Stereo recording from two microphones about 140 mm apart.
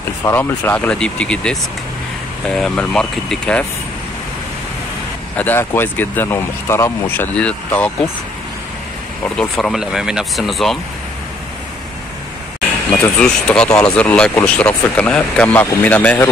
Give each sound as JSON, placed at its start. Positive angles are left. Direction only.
{"t": 0.3, "sound": "speech", "side_deg": 15}
{"t": 5.3, "sound": "speech", "side_deg": 15}
{"t": 9.4, "sound": "speech", "side_deg": 0}
{"t": 12.9, "sound": "speech", "side_deg": 5}